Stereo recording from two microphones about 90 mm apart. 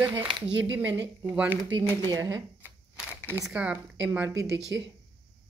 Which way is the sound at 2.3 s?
20° right (ahead or behind).